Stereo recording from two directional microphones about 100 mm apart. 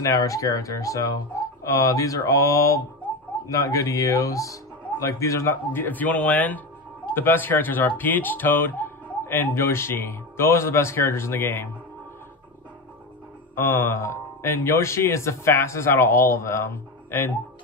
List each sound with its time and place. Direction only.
0.0 s speech: 35° left (ahead or behind)
13.6 s speech: 25° left (ahead or behind)